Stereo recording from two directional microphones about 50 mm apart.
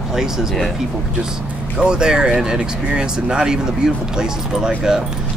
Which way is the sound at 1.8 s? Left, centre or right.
Centre.